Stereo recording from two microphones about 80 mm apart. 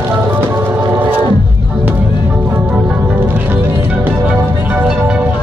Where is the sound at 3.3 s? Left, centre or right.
Right.